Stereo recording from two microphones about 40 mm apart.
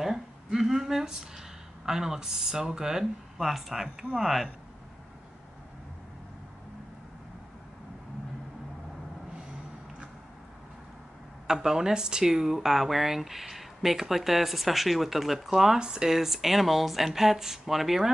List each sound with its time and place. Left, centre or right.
0.0 s a sound: centre
1.9 s speech: centre
11.4 s speech: centre
15.8 s speech: centre
16.2 s speech: centre